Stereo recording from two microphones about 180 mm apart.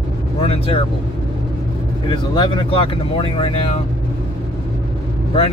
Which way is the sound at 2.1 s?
25° left (ahead or behind).